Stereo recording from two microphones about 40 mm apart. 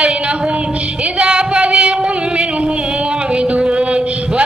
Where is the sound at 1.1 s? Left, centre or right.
Right.